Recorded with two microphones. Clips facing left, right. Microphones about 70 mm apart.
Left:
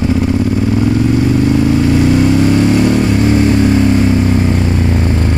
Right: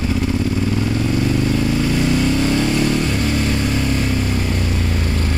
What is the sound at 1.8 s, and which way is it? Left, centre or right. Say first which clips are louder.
Vehicle: left 7 dB; left.